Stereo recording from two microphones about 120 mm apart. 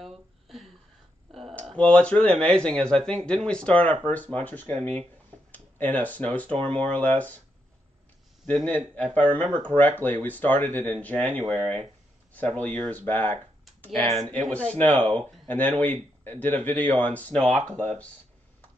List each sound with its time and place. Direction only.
0.0 s a sound: centre (ahead or behind)
1.8 s speech: 10° left (ahead or behind)
8.5 s speech: 15° left (ahead or behind)
14.5 s speech: 10° left (ahead or behind)